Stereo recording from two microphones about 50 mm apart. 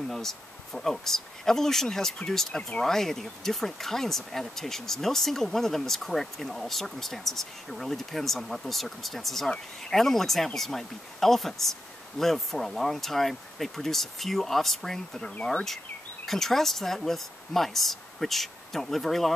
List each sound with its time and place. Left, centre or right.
0.1 s speech: centre